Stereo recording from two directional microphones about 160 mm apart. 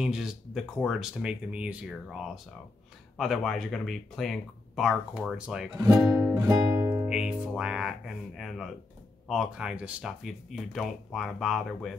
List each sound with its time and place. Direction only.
0.0 s speech: 5° right (ahead or behind)
5.8 s speech: 20° right (ahead or behind)
6.1 s music: 15° right (ahead or behind)
7.1 s speech: 5° right (ahead or behind)